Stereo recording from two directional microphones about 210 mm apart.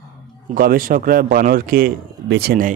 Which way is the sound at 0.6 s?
45° right (ahead or behind).